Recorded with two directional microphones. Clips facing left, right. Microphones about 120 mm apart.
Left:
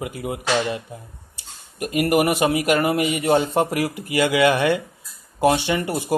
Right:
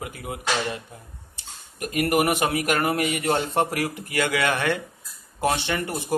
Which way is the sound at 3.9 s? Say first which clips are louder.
Left 5 dB; 10° left (ahead or behind).